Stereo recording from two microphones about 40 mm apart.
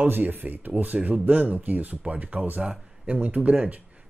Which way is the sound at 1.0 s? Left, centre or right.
Right.